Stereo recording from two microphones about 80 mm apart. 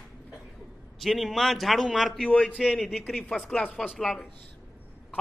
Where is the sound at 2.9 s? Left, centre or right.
Centre.